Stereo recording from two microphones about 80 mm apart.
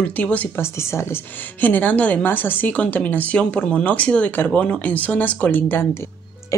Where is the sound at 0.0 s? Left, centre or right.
Centre.